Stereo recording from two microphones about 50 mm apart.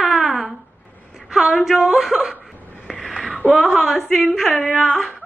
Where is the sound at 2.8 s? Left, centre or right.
Centre.